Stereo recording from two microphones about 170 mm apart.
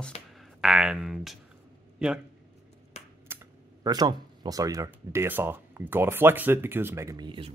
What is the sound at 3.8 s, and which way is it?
Speech, 25° right (ahead or behind).